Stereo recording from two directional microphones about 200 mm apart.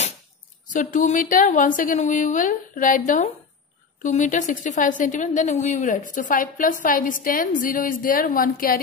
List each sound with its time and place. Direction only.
0.7 s a woman's voice: 40° left (ahead or behind)